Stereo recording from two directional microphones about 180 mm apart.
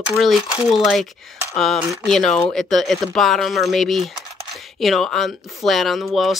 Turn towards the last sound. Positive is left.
turn(degrees=0)  # may be behind; listen again after turning